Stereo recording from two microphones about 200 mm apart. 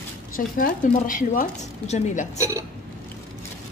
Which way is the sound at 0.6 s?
40° left (ahead or behind).